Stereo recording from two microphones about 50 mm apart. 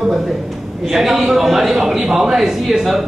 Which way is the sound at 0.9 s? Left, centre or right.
Centre.